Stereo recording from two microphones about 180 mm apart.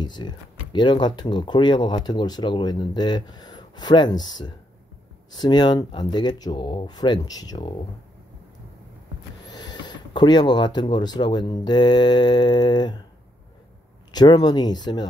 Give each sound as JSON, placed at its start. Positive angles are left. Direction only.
{"t": 0.0, "sound": "speech", "side_deg": 25}
{"t": 9.5, "sound": "speech", "side_deg": 20}
{"t": 14.1, "sound": "speech", "side_deg": 20}